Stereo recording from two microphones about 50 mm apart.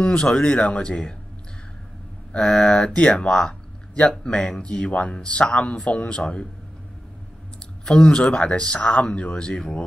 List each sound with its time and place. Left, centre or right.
0.0 s speech: centre
2.3 s speech: centre
7.8 s speech: centre